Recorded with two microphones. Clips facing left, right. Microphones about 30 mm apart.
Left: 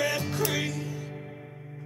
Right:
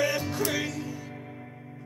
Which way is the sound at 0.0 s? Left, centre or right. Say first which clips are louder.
Right 1 dB; centre.